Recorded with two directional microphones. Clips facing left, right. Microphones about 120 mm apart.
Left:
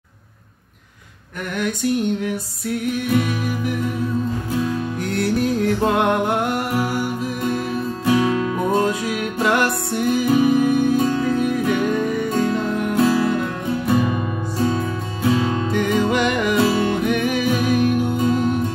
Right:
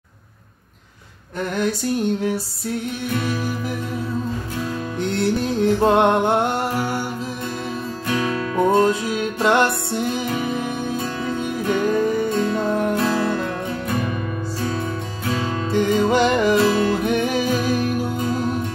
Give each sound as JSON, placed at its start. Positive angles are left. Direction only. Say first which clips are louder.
{"t": 1.6, "sound": "music", "louder": "left 1 dB", "side_deg": -30}
{"t": 5.0, "sound": "music", "louder": "even", "side_deg": -25}
{"t": 8.0, "sound": "music", "louder": "left 5 dB", "side_deg": 25}
{"t": 8.7, "sound": "music", "louder": "right 2 dB", "side_deg": -30}
{"t": 10.2, "sound": "music", "louder": "left 8 dB", "side_deg": 20}
{"t": 11.2, "sound": "music", "louder": "left 4 dB", "side_deg": -25}
{"t": 15.7, "sound": "music", "louder": "right 3 dB", "side_deg": -30}